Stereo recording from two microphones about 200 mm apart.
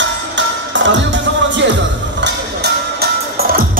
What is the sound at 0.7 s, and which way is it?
Music, 65° right (ahead or behind).